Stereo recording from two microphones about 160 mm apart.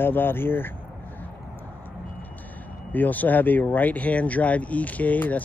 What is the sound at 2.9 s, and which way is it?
Speech, 10° left (ahead or behind).